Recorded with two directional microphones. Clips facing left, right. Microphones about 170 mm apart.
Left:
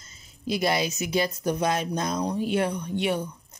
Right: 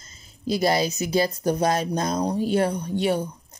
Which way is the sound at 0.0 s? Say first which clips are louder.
Right 3 dB; 35° right (ahead or behind).